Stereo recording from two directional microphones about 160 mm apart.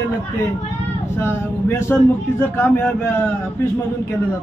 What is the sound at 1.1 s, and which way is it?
A man's voice, 15° left (ahead or behind).